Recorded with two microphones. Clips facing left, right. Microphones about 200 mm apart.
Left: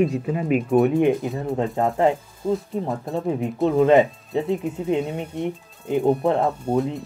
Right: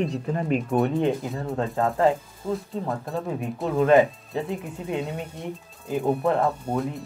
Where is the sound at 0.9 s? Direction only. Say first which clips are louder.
Left 5 dB; 15° left (ahead or behind).